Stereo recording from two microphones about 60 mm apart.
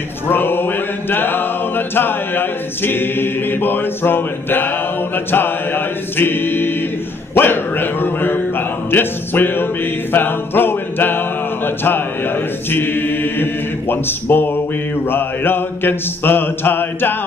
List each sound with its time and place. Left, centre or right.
0.3 s music: left